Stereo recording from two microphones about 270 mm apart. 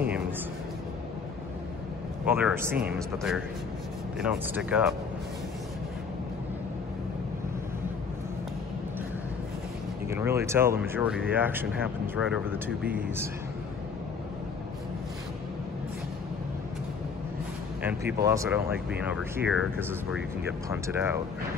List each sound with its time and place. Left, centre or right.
2.2 s speech: centre
10.0 s speech: centre
17.8 s speech: centre